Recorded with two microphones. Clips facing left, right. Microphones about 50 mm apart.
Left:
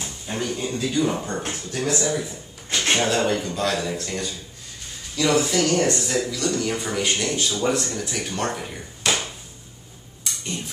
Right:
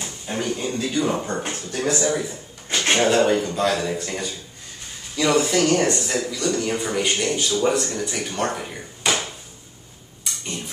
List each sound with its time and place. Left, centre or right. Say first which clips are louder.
0.3 s speech: right 1 dB; centre
5.9 s speech: even; centre